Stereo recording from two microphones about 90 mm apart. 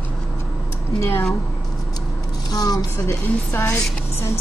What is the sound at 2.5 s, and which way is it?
Speech, 45° left (ahead or behind).